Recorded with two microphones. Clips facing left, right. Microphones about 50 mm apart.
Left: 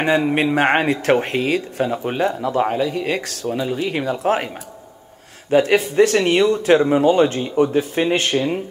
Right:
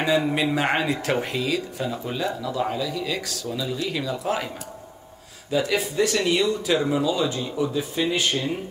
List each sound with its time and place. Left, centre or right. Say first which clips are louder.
0.2 s a man's voice: left 6 dB; left
5.5 s speech: left 8 dB; left